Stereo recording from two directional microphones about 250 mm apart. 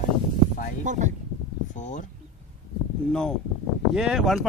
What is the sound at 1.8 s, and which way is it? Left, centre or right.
Speech, left.